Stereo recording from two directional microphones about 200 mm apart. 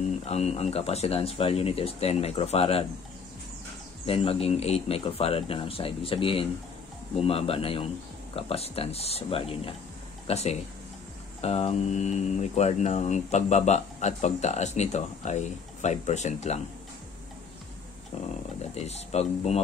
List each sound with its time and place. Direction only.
0.3 s speech: 30° left (ahead or behind)
4.0 s speech: 30° left (ahead or behind)
18.8 s speech: 30° left (ahead or behind)